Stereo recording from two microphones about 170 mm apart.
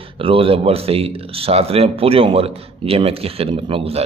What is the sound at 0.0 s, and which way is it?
Speech, 35° right (ahead or behind).